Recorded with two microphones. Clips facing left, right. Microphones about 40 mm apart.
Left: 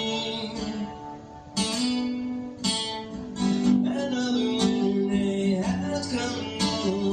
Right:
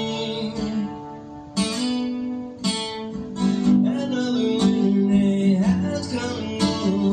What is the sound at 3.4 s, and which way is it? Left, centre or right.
Guitar, centre.